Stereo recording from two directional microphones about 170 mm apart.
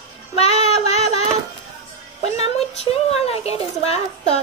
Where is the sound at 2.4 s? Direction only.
35° left (ahead or behind).